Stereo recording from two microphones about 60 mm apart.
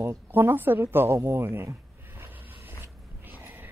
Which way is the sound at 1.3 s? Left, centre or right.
Right.